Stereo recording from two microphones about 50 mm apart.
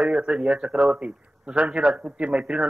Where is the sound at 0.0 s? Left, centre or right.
Centre.